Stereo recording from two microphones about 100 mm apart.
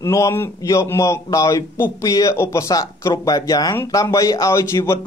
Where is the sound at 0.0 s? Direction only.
30° left (ahead or behind).